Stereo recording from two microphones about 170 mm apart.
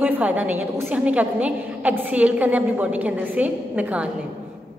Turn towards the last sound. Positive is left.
turn(degrees=-10)  # may be behind; listen again after turning